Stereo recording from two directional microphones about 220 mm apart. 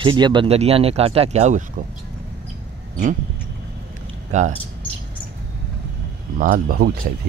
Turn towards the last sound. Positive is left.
turn(degrees=-40)  # may be behind; listen again after turning